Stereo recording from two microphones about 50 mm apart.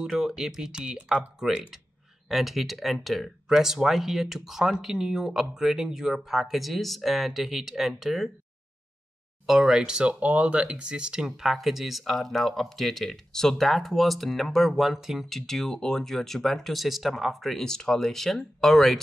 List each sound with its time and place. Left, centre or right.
0.0 s speech: centre
2.2 s speech: centre
9.5 s speech: centre
10.2 s speech: right; by 15.2 s centre
15.2 s speech: centre